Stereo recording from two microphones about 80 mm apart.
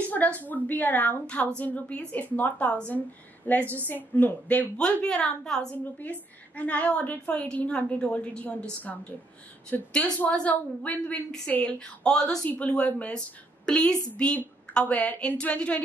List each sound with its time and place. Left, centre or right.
0.4 s a woman's voice: left